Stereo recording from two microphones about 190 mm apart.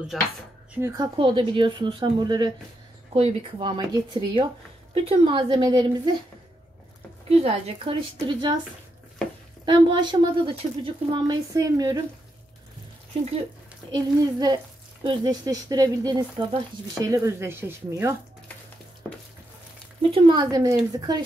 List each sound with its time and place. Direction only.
0.1 s speech: centre (ahead or behind)
0.7 s speech: 15° right (ahead or behind)
1.1 s speech: 25° right (ahead or behind)
7.2 s speech: 30° right (ahead or behind)
9.7 s speech: 25° right (ahead or behind)
13.9 s speech: 20° right (ahead or behind)
20.0 s speech: 25° right (ahead or behind)